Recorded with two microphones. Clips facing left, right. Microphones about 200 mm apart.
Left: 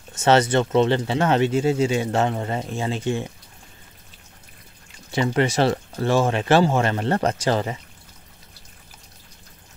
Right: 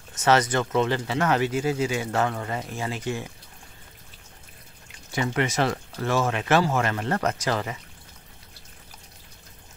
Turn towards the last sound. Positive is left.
turn(degrees=30)  # may be behind; listen again after turning